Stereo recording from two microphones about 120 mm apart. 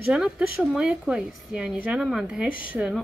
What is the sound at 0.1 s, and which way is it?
A woman's voice, 5° right (ahead or behind).